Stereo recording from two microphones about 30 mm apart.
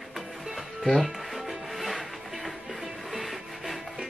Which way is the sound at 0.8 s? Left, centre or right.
Centre.